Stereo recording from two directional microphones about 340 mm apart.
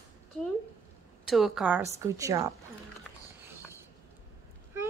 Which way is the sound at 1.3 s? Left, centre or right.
Centre.